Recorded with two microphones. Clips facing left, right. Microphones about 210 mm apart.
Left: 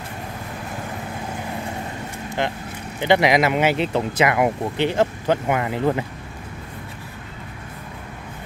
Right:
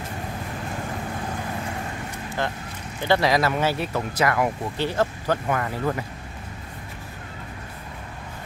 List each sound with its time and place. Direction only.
3.0 s speech: 20° left (ahead or behind)